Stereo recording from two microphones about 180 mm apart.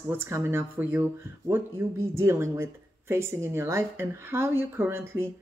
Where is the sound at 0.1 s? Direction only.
15° right (ahead or behind).